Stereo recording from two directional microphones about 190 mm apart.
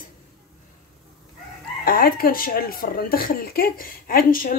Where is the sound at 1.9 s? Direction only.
50° left (ahead or behind).